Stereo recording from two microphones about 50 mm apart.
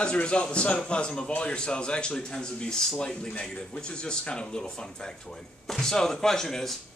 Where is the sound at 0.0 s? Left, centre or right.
Left.